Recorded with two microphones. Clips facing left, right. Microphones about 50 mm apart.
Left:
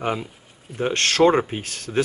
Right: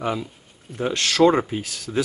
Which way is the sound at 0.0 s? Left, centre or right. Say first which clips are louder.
Even; left.